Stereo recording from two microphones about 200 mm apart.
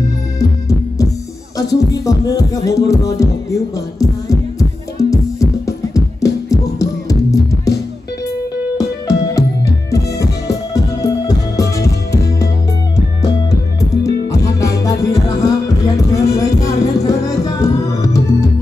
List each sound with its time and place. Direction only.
0.4 s music: 15° left (ahead or behind)
5.7 s music: 15° left (ahead or behind)
13.5 s music: 15° left (ahead or behind)